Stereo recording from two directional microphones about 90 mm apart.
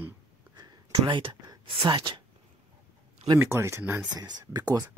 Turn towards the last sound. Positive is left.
turn(degrees=-45)  # may be behind; listen again after turning